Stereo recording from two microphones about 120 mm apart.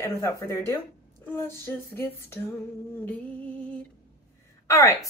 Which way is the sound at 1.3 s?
20° left (ahead or behind).